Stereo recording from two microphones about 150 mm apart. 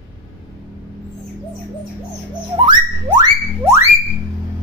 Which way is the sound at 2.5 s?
30° right (ahead or behind).